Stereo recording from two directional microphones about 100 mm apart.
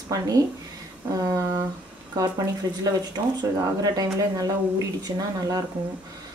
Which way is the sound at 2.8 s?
40° right (ahead or behind).